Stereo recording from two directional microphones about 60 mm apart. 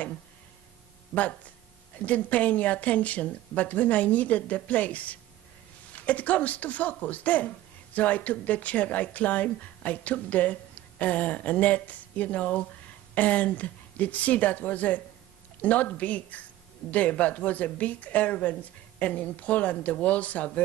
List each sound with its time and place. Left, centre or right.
2.0 s speech: left